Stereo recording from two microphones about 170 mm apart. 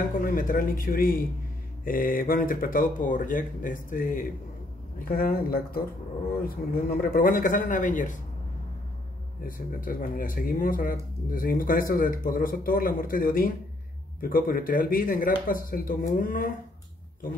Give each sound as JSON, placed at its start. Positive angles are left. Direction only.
{"t": 0.2, "sound": "speech", "side_deg": 55}
{"t": 9.4, "sound": "speech", "side_deg": 55}